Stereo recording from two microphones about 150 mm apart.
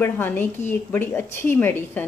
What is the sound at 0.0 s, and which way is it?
Speech, 15° left (ahead or behind).